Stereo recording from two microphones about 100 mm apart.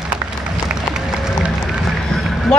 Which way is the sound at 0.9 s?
5° right (ahead or behind).